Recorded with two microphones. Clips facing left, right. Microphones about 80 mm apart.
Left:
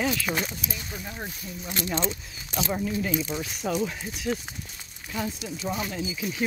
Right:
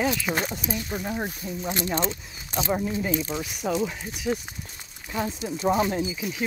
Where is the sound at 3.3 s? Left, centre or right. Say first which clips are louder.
Right 1 dB; centre.